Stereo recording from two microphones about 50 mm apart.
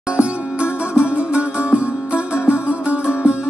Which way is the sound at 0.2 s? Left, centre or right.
Centre.